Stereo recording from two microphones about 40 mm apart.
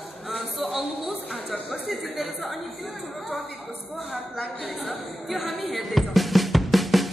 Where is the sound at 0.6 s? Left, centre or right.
Centre.